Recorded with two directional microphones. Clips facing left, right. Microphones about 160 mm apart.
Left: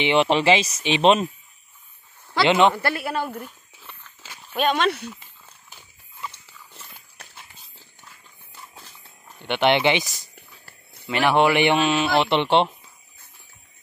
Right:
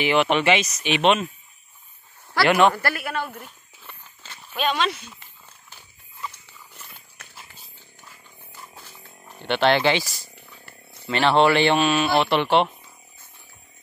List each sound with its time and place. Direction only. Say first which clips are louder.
0.0 s speech: left 1 dB; 25° left (ahead or behind)
2.3 s speech: even; 20° left (ahead or behind)
3.3 s a sound: left 5 dB; 5° left (ahead or behind)
4.6 s speech: left 3 dB; 50° left (ahead or behind)
9.5 s a man's voice: even; 20° left (ahead or behind)